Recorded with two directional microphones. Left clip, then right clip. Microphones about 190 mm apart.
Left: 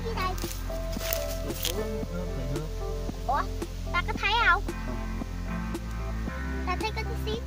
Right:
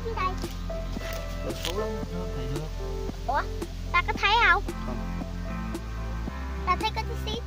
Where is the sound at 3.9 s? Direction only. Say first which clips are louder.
Right 4 dB; 35° right (ahead or behind).